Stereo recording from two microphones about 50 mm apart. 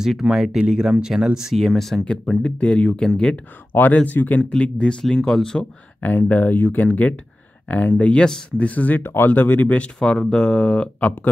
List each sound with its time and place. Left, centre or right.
0.0 s speech: centre
1.6 s speech: centre
2.0 s speech: centre
3.9 s speech: left; by 5.7 s centre
6.0 s speech: left
6.9 s speech: left
9.0 s speech: left
9.3 s speech: left
9.9 s speech: centre